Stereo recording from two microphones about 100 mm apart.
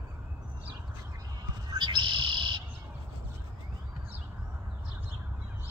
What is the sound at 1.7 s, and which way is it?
Bird, 50° right (ahead or behind).